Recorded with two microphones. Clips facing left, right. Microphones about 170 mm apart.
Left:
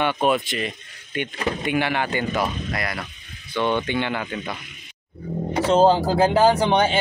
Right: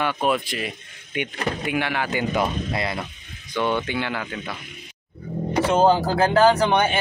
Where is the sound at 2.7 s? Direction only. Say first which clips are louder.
Right 2 dB; 25° right (ahead or behind).